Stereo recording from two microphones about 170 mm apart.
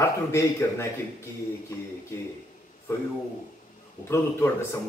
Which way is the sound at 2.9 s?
15° left (ahead or behind).